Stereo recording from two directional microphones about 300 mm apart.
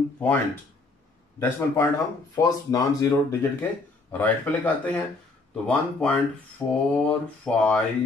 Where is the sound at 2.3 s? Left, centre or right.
Centre.